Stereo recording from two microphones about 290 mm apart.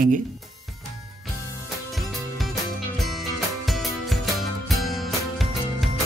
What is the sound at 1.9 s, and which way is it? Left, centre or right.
Music, centre.